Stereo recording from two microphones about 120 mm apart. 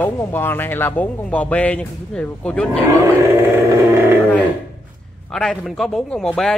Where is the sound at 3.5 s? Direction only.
20° right (ahead or behind).